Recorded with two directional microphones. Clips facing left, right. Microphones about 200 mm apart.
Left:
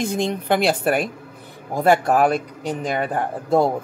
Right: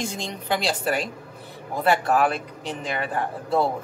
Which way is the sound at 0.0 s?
55° left (ahead or behind).